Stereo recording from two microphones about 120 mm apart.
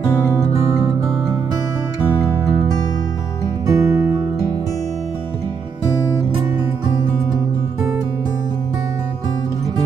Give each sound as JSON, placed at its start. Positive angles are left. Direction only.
{"t": 0.4, "sound": "music", "side_deg": -25}
{"t": 3.6, "sound": "music", "side_deg": -25}